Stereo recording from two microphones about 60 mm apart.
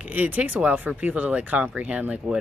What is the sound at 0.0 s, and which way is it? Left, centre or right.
Speech, right.